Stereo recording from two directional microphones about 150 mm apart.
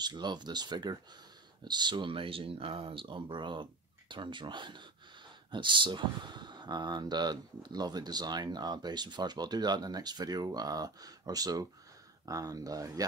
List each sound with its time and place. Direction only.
0.0 s speech: 30° right (ahead or behind)